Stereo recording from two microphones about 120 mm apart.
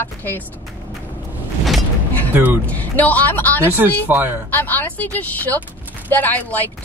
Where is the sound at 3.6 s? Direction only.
15° right (ahead or behind).